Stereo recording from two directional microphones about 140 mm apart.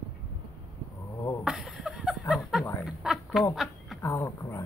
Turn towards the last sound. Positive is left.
turn(degrees=20)  # may be behind; listen again after turning